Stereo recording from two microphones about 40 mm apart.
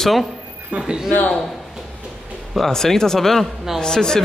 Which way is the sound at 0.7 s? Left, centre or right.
Right.